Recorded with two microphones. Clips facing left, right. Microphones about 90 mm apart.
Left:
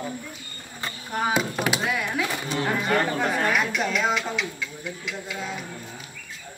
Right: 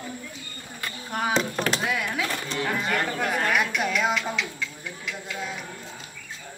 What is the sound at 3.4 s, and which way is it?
Speech, centre (ahead or behind).